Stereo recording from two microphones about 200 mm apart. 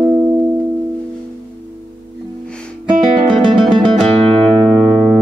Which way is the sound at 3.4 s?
25° right (ahead or behind).